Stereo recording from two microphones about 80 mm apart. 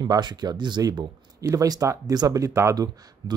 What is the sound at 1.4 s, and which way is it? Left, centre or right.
Speech, right.